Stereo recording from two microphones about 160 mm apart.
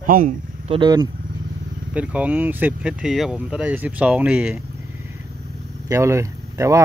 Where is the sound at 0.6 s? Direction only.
30° right (ahead or behind).